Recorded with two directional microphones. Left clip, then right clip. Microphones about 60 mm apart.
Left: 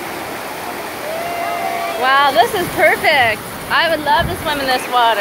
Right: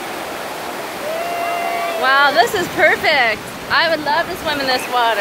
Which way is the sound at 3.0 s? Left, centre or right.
Centre.